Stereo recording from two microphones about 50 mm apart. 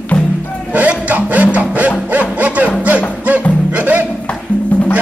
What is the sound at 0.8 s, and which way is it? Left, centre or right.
Music, right.